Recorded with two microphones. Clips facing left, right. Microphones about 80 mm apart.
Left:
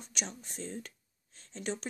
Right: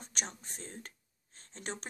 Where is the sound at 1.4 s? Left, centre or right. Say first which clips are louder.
Left 5 dB; right.